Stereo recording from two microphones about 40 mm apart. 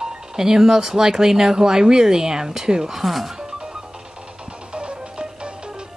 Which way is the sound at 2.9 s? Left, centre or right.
Centre.